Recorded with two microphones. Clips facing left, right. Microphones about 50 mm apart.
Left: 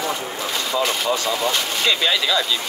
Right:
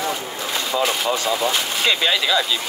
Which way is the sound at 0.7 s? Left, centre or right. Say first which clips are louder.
Right 1 dB; centre.